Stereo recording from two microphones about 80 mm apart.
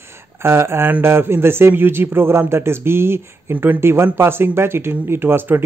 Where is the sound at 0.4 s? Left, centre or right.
Right.